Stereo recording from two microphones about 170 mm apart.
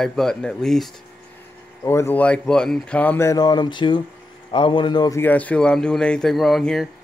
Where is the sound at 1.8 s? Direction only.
15° left (ahead or behind).